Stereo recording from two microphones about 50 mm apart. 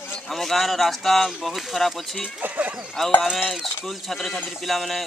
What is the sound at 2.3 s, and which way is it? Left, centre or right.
Speech, right.